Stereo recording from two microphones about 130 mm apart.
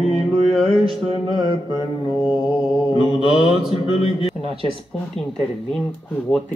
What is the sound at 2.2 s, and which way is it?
Mantra, 5° right (ahead or behind).